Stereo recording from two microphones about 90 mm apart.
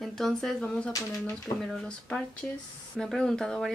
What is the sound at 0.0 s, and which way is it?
Speech, 5° left (ahead or behind).